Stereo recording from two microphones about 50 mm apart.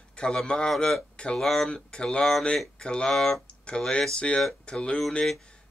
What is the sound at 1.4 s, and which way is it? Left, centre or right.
Speech, centre.